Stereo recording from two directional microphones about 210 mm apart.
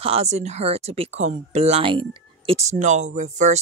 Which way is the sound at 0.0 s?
30° right (ahead or behind).